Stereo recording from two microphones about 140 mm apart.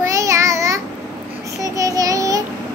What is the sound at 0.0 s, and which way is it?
Child singing, 25° right (ahead or behind).